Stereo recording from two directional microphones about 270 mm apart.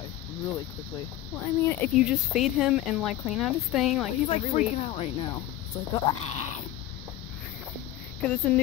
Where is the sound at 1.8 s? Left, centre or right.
Centre.